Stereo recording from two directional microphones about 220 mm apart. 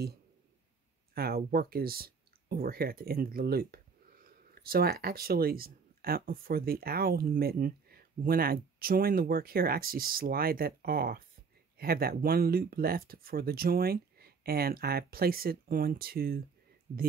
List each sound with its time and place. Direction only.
1.1 s speech: 45° right (ahead or behind)